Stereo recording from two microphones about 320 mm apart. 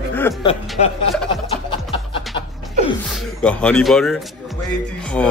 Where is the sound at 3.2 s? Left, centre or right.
Centre.